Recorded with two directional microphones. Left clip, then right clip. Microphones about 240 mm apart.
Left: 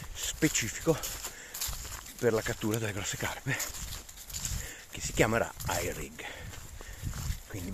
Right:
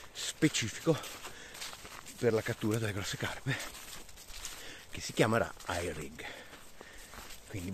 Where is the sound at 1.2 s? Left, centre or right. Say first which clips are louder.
Left 4 dB; left.